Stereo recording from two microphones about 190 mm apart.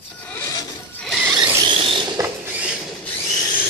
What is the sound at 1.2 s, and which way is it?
Squeal, 10° right (ahead or behind).